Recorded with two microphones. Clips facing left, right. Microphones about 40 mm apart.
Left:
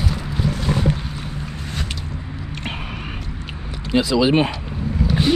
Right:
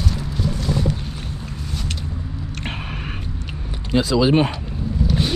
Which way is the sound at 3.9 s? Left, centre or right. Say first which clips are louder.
Even; left.